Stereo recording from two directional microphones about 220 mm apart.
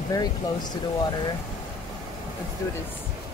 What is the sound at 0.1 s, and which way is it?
Speech, 20° left (ahead or behind).